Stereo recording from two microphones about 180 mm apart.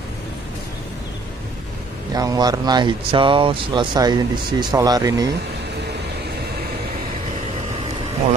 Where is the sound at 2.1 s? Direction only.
20° right (ahead or behind).